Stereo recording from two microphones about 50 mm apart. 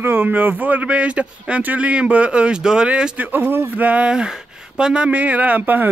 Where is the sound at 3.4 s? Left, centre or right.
Right.